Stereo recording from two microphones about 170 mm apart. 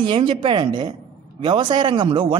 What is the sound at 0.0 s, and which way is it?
A woman's voice, 30° right (ahead or behind).